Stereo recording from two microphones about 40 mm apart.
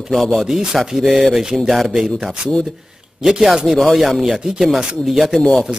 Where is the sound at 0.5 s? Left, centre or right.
Centre.